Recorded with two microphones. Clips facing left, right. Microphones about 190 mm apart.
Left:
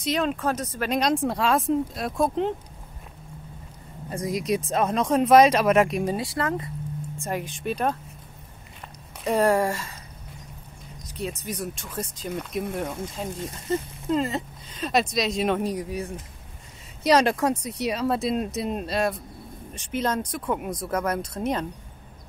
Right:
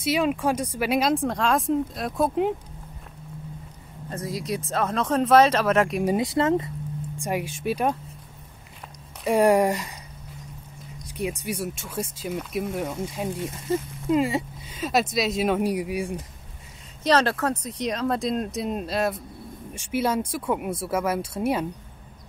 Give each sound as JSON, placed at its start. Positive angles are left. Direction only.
{"t": 0.0, "sound": "speech", "side_deg": -10}
{"t": 4.1, "sound": "speech", "side_deg": 15}
{"t": 5.9, "sound": "speech", "side_deg": -5}
{"t": 6.1, "sound": "speech", "side_deg": -20}
{"t": 7.2, "sound": "speech", "side_deg": -10}
{"t": 9.2, "sound": "speech", "side_deg": -10}
{"t": 11.1, "sound": "speech", "side_deg": -10}
{"t": 13.1, "sound": "speech", "side_deg": -10}
{"t": 17.0, "sound": "speech", "side_deg": 10}